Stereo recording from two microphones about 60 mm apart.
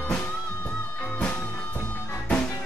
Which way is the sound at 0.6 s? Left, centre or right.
Left.